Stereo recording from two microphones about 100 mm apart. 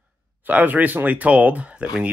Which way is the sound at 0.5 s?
15° right (ahead or behind).